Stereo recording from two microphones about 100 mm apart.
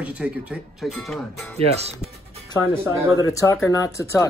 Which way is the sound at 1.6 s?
90° right.